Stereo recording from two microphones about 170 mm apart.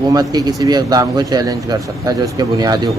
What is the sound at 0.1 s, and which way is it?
Speech, 20° right (ahead or behind).